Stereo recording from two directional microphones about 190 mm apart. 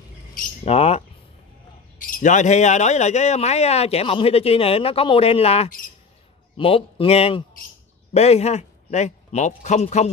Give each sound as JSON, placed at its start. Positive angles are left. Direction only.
{"t": 0.7, "sound": "speech", "side_deg": 35}
{"t": 2.1, "sound": "a man's voice", "side_deg": 40}